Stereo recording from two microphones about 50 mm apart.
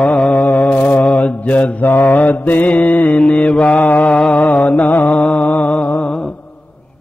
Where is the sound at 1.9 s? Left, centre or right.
Left.